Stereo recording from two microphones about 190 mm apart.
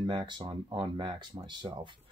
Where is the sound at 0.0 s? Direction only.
25° right (ahead or behind).